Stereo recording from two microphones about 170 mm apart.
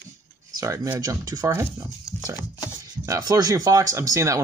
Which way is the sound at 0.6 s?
20° right (ahead or behind).